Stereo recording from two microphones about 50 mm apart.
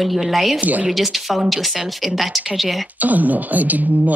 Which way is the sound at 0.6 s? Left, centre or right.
Right.